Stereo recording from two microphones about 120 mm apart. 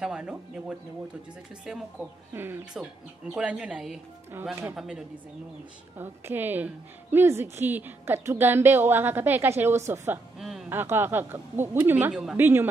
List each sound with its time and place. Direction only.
0.0 s a woman's voice: 10° right (ahead or behind)
2.3 s a woman's voice: 20° right (ahead or behind)
5.9 s a woman's voice: 15° right (ahead or behind)
10.4 s a sound: centre (ahead or behind)
10.7 s a woman's voice: 20° right (ahead or behind)